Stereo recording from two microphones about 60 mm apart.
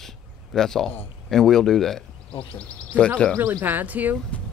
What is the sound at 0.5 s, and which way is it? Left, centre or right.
Speech, centre.